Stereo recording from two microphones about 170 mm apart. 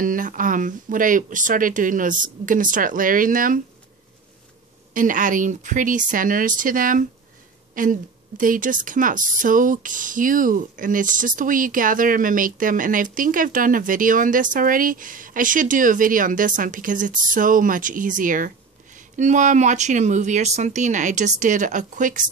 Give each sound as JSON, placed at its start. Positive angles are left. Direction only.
{"t": 0.0, "sound": "a woman's voice", "side_deg": -50}
{"t": 4.9, "sound": "a woman's voice", "side_deg": -50}